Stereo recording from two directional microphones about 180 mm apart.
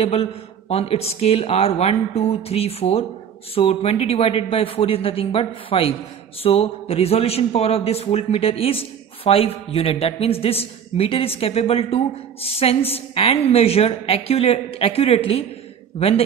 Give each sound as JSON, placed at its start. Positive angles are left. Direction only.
{"t": 0.0, "sound": "a man's voice", "side_deg": 35}